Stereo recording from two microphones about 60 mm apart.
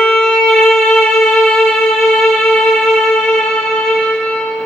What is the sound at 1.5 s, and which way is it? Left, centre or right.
Music, centre.